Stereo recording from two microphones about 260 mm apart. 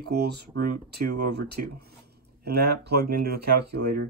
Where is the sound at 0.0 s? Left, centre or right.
Right.